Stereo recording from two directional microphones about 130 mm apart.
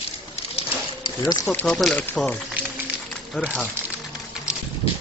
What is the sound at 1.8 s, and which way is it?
Speech, centre (ahead or behind).